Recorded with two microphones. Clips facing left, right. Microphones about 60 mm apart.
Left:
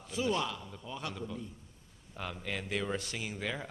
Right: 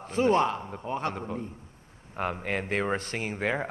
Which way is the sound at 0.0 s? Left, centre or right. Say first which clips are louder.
Right 9 dB; right.